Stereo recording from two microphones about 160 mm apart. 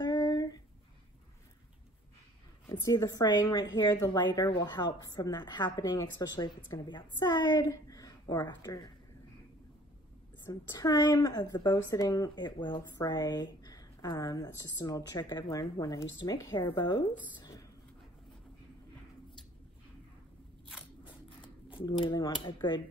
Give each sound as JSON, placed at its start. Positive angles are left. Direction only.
{"t": 0.0, "sound": "a sound", "side_deg": 25}
{"t": 2.7, "sound": "a woman's voice", "side_deg": 25}
{"t": 10.4, "sound": "a woman's voice", "side_deg": 25}
{"t": 21.6, "sound": "a woman's voice", "side_deg": 30}